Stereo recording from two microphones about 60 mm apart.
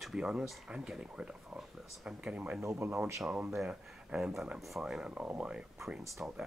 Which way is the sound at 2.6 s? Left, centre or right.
Right.